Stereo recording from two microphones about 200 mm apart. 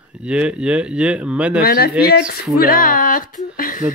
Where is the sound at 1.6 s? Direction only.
50° left (ahead or behind).